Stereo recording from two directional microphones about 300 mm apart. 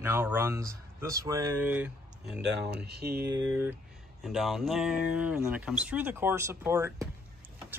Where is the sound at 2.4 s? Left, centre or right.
Right.